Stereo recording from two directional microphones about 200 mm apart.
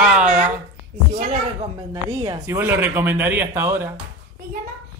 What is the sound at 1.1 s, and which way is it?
Speech, 40° right (ahead or behind).